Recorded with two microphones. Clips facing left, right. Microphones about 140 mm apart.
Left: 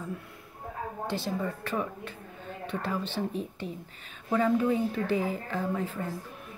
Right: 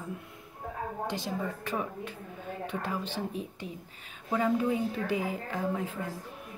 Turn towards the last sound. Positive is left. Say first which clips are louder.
# left 1 dB
turn(degrees=-15)  # may be behind; listen again after turning